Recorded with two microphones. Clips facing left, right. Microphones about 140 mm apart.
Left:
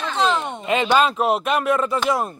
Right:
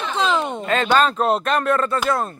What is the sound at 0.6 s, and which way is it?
Speech, 15° left (ahead or behind).